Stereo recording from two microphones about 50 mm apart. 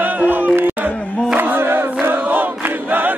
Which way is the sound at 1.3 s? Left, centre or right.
Right.